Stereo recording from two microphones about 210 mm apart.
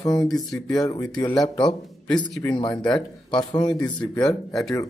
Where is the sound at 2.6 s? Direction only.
20° left (ahead or behind).